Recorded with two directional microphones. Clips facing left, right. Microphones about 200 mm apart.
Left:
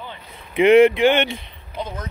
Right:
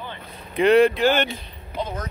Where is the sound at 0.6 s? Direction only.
20° left (ahead or behind).